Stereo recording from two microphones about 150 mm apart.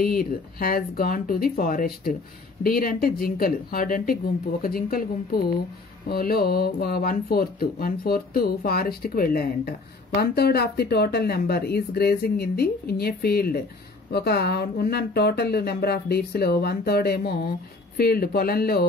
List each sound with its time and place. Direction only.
0.0 s speech: 80° left
4.6 s speech: 85° left